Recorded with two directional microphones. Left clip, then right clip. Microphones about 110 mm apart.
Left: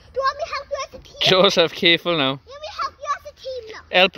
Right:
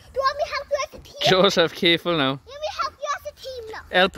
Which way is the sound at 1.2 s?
15° right (ahead or behind).